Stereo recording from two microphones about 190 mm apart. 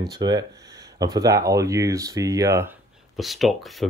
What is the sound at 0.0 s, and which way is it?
Speech, 20° right (ahead or behind).